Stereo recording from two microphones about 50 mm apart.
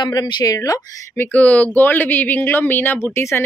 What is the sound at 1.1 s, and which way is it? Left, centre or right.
Speech, left.